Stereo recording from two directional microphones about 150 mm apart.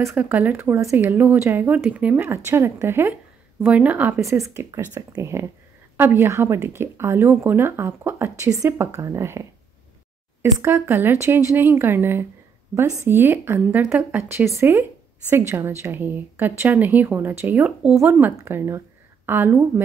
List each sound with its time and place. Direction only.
0.0 s a woman's voice: 15° right (ahead or behind)
10.4 s a woman's voice: 15° right (ahead or behind)